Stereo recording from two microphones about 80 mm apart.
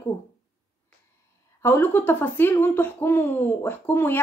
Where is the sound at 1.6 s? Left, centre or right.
Left.